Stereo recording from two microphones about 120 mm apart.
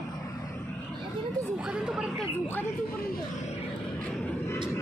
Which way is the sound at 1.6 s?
5° right (ahead or behind).